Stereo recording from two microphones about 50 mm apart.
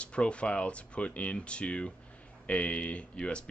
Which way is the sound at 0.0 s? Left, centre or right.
Left.